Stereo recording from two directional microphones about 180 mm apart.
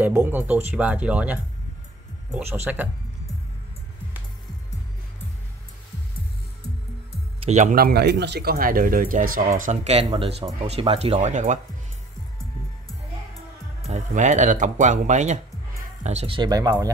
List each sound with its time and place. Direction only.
0.0 s speech: 10° right (ahead or behind)
7.3 s speech: 40° right (ahead or behind)
7.7 s speech: 60° right (ahead or behind); by 11.6 s 40° right (ahead or behind)
13.8 s speech: 40° right (ahead or behind); by 16.7 s 20° right (ahead or behind)